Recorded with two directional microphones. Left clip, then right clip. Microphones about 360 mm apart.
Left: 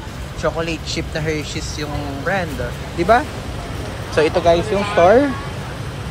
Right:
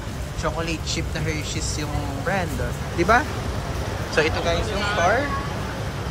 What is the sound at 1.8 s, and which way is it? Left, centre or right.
Speech, centre.